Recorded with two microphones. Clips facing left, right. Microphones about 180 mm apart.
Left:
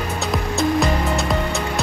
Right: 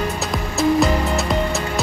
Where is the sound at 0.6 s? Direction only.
Centre (ahead or behind).